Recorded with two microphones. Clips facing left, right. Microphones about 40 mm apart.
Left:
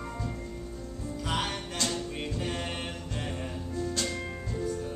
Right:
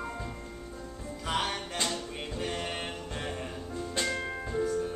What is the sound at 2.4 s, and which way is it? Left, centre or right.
A capella, centre.